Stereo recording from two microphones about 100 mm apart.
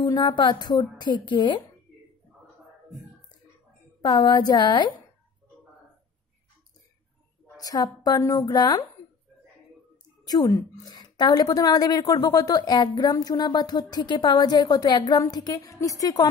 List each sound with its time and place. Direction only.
0.0 s a woman's voice: 45° left (ahead or behind)
4.0 s a woman's voice: 50° left (ahead or behind)
7.5 s a woman's voice: 40° left (ahead or behind)
10.2 s a woman's voice: 40° left (ahead or behind)
13.1 s a woman's voice: 40° left (ahead or behind)